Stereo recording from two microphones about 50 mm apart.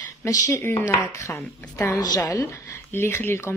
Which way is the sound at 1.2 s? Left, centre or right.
Left.